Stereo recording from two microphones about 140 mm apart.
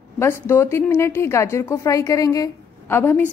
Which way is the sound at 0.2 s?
20° left (ahead or behind).